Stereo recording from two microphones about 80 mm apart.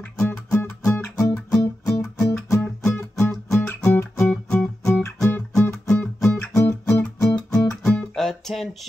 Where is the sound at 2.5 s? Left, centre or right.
Left.